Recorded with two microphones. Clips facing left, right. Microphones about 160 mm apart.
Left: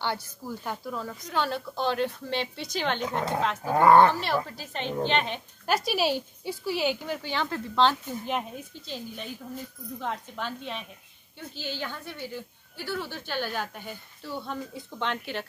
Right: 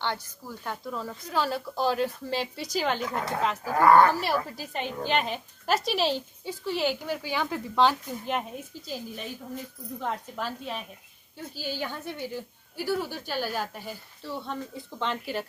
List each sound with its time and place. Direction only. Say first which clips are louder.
0.0 s speech: left 1 dB; 10° left (ahead or behind); by 3.0 s 5° right (ahead or behind)
3.6 s speech: left 1 dB; 20° left (ahead or behind)
4.1 s a woman's voice: right 1 dB; 10° right (ahead or behind)